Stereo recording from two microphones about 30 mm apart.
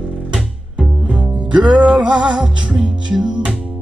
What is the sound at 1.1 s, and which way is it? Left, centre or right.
Music, right.